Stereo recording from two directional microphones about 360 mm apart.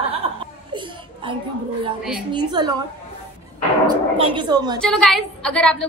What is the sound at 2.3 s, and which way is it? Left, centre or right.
Speech, centre.